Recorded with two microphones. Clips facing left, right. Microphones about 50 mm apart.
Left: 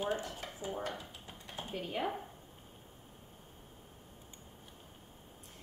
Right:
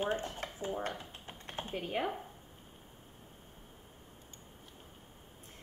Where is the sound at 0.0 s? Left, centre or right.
Right.